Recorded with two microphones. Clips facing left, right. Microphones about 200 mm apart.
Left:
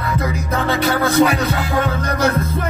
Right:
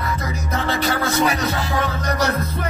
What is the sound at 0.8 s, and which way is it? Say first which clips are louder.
Music: left 6 dB; 60° left (ahead or behind).